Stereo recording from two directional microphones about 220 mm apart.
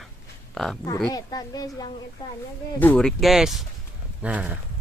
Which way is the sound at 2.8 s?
5° left (ahead or behind).